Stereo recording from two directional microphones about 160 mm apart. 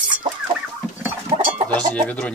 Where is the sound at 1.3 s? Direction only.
40° right (ahead or behind).